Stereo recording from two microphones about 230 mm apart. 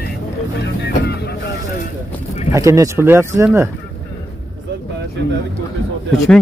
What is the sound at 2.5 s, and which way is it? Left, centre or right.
Speech, centre.